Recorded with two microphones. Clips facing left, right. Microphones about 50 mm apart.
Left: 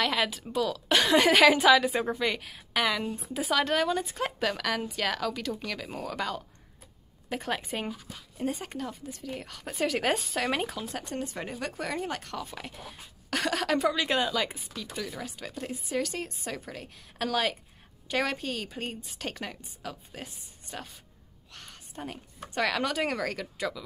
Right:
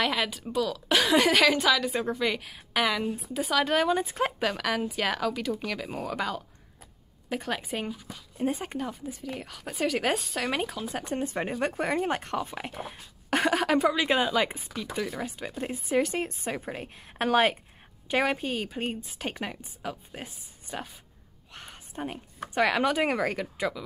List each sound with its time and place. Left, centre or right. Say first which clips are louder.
0.0 s a woman's voice: even; centre
4.4 s a woman's voice: right 1 dB; centre
8.4 s a woman's voice: right 3 dB; centre
11.0 s speech: right 7 dB; right
18.0 s speech: right 3 dB; centre
21.5 s a sound: right 3 dB; right
22.5 s speech: right 4 dB; centre